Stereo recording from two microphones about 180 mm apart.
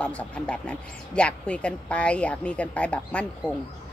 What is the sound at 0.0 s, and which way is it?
Speech, 5° left (ahead or behind).